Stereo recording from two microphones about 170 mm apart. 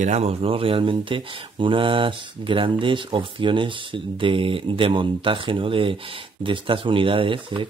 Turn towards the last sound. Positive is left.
turn(degrees=-30)  # may be behind; listen again after turning